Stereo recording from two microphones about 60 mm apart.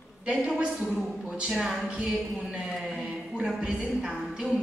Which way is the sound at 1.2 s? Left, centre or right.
Centre.